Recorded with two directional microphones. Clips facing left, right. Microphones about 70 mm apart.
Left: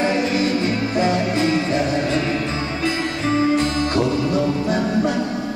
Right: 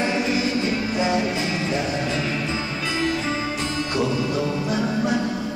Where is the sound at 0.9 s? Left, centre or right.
Left.